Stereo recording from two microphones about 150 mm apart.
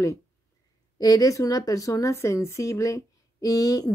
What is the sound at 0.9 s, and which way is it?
A woman's voice, 25° left (ahead or behind).